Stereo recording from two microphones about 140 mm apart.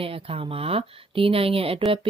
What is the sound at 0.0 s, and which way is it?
Speech, 40° right (ahead or behind).